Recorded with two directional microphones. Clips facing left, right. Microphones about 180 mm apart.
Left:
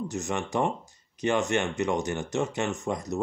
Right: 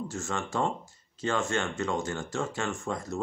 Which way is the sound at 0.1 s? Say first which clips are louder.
Left 3 dB; 20° left (ahead or behind).